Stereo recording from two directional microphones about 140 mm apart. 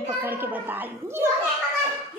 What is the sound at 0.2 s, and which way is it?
A woman's voice, 15° right (ahead or behind).